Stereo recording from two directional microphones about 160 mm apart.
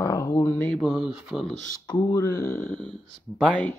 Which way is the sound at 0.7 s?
5° right (ahead or behind).